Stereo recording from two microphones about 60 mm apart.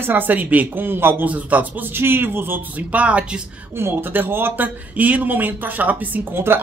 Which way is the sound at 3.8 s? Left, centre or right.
Right.